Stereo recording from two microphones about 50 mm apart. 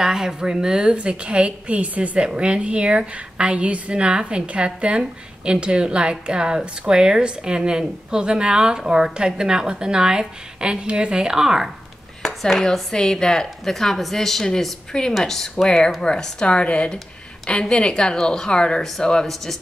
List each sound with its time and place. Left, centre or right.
0.0 s a woman's voice: centre
12.2 s speech: centre